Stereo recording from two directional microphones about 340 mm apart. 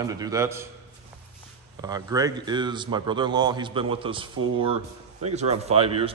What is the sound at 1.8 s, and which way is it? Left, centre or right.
A man's voice, centre.